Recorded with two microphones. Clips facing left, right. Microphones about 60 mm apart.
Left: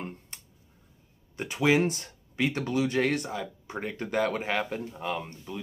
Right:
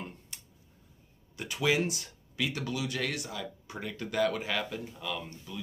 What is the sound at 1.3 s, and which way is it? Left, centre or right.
Speech, left.